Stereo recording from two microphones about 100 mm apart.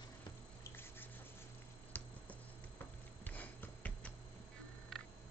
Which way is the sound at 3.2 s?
20° left (ahead or behind).